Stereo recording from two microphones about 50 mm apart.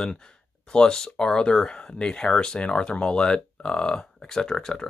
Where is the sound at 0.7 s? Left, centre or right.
Centre.